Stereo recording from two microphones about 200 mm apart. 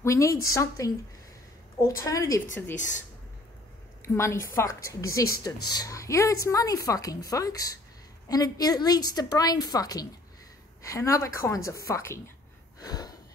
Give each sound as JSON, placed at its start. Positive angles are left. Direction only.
{"t": 0.0, "sound": "a woman's voice", "side_deg": 15}
{"t": 4.0, "sound": "a woman's voice", "side_deg": 15}
{"t": 12.8, "sound": "gasp", "side_deg": 20}